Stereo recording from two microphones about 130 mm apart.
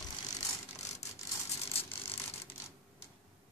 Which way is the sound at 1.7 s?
45° left (ahead or behind).